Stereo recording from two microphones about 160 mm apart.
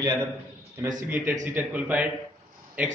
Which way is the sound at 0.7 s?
25° right (ahead or behind).